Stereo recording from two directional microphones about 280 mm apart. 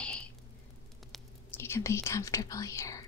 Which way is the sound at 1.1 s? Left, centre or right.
Centre.